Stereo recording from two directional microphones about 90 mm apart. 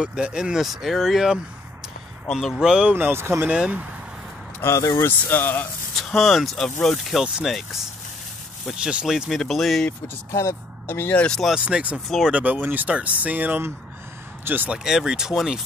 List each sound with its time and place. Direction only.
0.0 s speech: 10° right (ahead or behind)
2.7 s speech: 10° right (ahead or behind)
3.0 s speech: 25° right (ahead or behind)
3.4 s speech: 15° right (ahead or behind)
4.6 s speech: 30° left (ahead or behind)
5.9 s speech: 5° left (ahead or behind)
10.3 s speech: 30° left (ahead or behind)
11.2 s speech: 5° left (ahead or behind)
11.5 s speech: 15° right (ahead or behind)
12.1 s speech: 5° right (ahead or behind)
12.6 s speech: 15° right (ahead or behind)
14.8 s speech: 5° right (ahead or behind)